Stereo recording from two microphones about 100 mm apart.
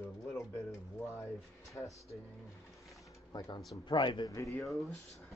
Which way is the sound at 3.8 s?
50° left (ahead or behind).